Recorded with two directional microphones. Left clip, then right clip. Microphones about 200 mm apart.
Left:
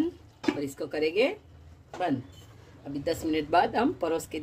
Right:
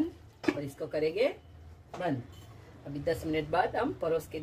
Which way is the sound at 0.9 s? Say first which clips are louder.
Left 3 dB; 50° left (ahead or behind).